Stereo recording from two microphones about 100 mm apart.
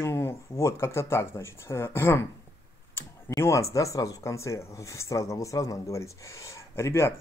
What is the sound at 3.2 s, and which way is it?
Speech, 30° left (ahead or behind).